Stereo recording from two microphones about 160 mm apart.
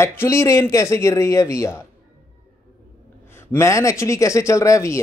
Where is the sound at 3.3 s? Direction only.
15° left (ahead or behind).